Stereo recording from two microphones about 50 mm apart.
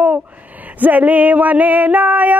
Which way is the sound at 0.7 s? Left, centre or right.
Right.